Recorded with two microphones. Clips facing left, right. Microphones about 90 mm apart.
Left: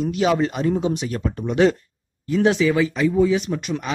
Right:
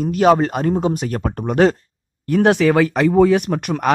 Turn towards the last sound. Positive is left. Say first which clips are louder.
# right 5 dB
turn(degrees=-55)  # may be behind; listen again after turning